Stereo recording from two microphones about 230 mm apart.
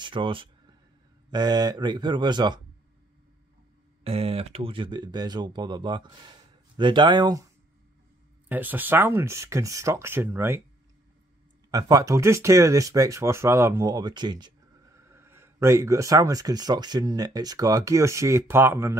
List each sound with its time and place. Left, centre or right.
0.0 s a sound: right
1.3 s speech: centre
4.0 s speech: right
8.5 s speech: centre
11.7 s speech: centre